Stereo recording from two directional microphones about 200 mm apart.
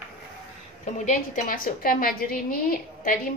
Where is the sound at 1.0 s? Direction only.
40° left (ahead or behind).